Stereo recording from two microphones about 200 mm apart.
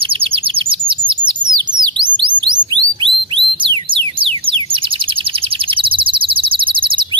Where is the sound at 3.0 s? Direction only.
25° right (ahead or behind).